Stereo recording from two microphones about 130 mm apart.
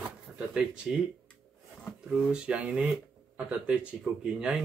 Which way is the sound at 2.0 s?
5° right (ahead or behind).